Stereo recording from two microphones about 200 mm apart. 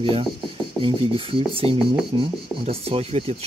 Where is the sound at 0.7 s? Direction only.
25° right (ahead or behind).